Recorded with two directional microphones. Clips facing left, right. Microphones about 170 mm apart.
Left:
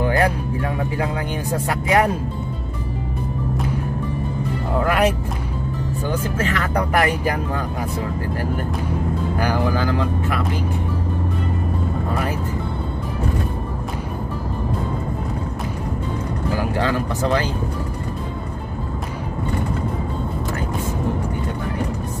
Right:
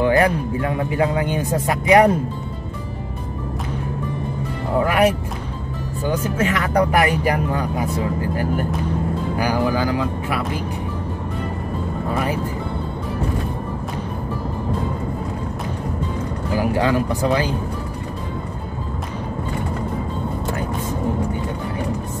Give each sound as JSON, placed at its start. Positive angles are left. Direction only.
{"t": 0.0, "sound": "speech", "side_deg": -20}
{"t": 4.8, "sound": "speech", "side_deg": -10}
{"t": 9.4, "sound": "speech", "side_deg": -10}
{"t": 16.7, "sound": "speech", "side_deg": -15}